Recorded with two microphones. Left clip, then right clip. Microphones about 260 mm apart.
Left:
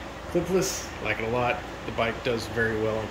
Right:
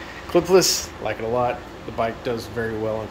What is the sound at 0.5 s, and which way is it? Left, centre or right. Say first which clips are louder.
Speech: right 9 dB; centre.